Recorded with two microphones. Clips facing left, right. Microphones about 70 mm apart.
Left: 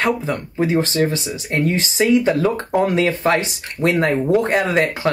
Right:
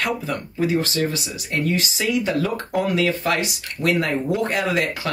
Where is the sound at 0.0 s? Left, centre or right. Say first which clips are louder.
Left 5 dB; left.